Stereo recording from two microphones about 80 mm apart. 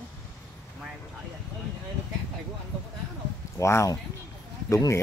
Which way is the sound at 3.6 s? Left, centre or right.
Left.